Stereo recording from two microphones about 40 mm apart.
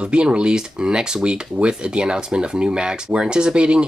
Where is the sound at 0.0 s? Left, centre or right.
Right.